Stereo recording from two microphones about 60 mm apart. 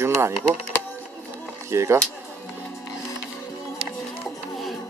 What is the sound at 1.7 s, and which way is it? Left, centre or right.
Speech, right.